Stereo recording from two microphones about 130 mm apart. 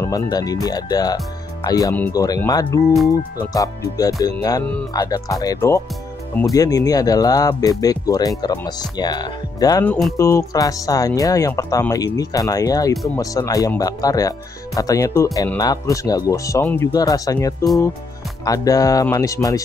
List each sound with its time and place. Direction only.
0.0 s speech: 25° left (ahead or behind)
16.6 s speech: 15° left (ahead or behind)
16.9 s speech: 30° left (ahead or behind)